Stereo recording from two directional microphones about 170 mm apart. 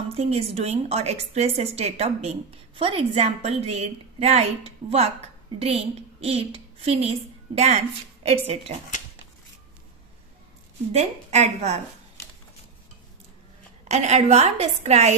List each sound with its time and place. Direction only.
0.1 s a woman's voice: 35° right (ahead or behind)
10.9 s a woman's voice: 40° right (ahead or behind)
13.8 s a woman's voice: 40° right (ahead or behind)